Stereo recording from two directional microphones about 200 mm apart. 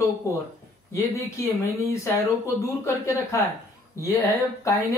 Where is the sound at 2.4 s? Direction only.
15° left (ahead or behind).